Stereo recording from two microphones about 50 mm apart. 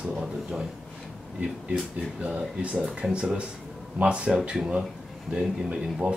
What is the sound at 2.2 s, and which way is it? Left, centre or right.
Speech, right.